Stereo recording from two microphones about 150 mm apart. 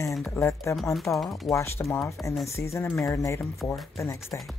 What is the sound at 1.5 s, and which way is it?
Speech, 15° left (ahead or behind).